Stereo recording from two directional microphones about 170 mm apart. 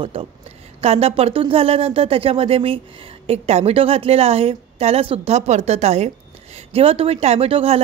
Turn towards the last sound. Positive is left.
turn(degrees=-35)  # may be behind; listen again after turning